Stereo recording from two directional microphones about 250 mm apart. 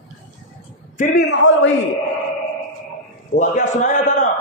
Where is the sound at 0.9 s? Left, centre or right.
Left.